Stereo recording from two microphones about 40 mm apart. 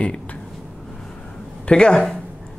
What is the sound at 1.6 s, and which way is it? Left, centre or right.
Speech, left.